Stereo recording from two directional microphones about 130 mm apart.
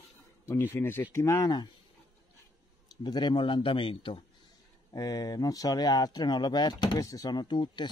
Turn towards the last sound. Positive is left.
turn(degrees=35)  # may be behind; listen again after turning